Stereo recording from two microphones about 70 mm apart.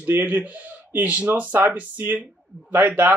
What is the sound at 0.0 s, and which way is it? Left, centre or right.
Speech, right.